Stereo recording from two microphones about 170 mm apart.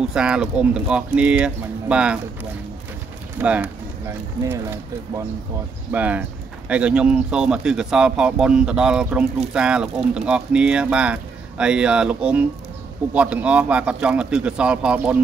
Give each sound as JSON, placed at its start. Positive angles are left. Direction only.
{"t": 0.1, "sound": "speech", "side_deg": -5}
{"t": 3.3, "sound": "speech", "side_deg": -10}